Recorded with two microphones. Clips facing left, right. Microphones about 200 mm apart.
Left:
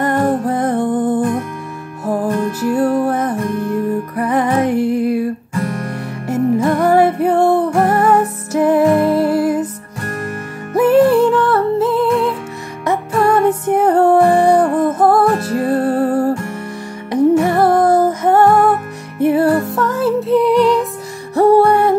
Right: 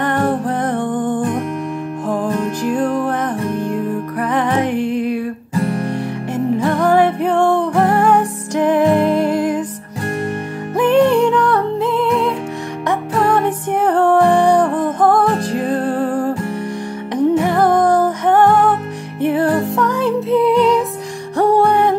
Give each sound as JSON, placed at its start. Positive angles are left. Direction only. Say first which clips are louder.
{"t": 0.0, "sound": "music", "louder": "left 2 dB", "side_deg": 10}
{"t": 5.5, "sound": "music", "louder": "right 2 dB", "side_deg": -30}
{"t": 6.2, "sound": "music", "louder": "left 4 dB", "side_deg": 10}
{"t": 10.8, "sound": "music", "louder": "left 2 dB", "side_deg": 5}